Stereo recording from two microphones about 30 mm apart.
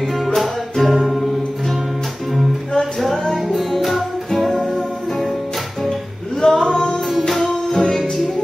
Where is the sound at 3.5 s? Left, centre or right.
Centre.